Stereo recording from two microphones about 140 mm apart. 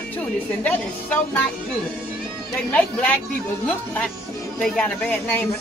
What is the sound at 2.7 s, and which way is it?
Speech, 10° left (ahead or behind).